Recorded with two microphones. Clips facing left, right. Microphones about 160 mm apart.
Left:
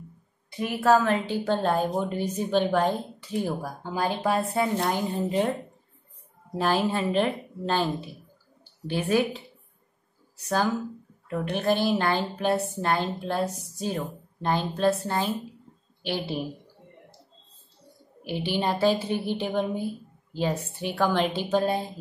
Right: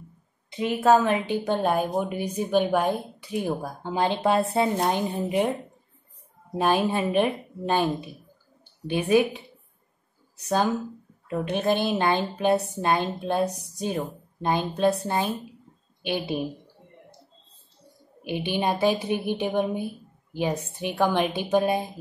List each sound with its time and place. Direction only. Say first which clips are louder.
0.5 s a woman's voice: right 2 dB; 20° right (ahead or behind)
18.2 s a woman's voice: right 1 dB; 15° right (ahead or behind)